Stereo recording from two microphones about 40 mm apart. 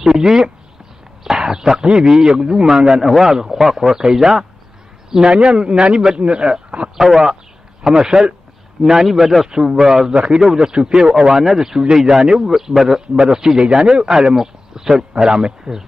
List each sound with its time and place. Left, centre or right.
0.0 s a man's voice: centre
3.1 s a man's voice: centre
5.1 s a man's voice: right; by 9.5 s centre
9.5 s a man's voice: centre
10.1 s a man's voice: right
10.4 s a man's voice: centre